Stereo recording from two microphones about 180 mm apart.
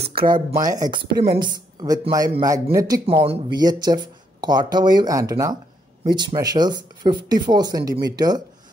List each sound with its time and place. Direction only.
0.1 s speech: 55° right (ahead or behind)
0.7 s speech: 20° right (ahead or behind)